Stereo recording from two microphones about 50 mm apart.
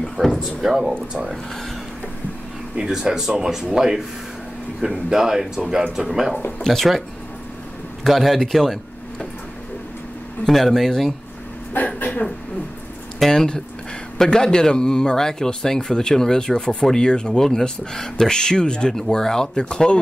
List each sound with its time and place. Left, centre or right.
0.4 s a man's voice: centre
2.8 s speech: centre
6.6 s speech: centre
8.0 s a man's voice: centre
10.4 s a man's voice: centre
11.7 s a sound: left
13.2 s speech: centre